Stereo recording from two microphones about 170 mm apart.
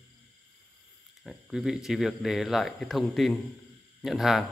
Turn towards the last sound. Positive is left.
turn(degrees=0)  # may be behind; listen again after turning